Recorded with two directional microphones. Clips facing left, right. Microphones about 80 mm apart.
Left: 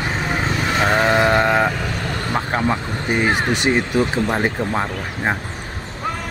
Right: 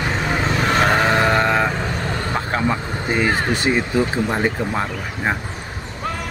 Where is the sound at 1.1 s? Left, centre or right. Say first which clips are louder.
Left 1 dB; centre.